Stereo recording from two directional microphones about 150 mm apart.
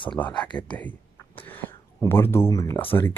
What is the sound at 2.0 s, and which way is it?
Speech, 15° left (ahead or behind).